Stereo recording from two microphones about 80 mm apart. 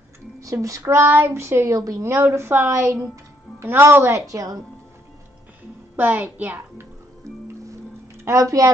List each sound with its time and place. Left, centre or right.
0.4 s a woman's voice: right
4.3 s speech: right
5.9 s a child's voice: right
8.3 s speech: right